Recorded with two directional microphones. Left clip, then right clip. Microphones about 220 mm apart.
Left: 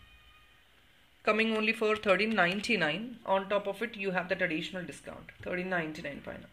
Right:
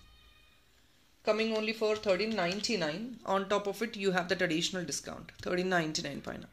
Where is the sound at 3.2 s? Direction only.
15° right (ahead or behind).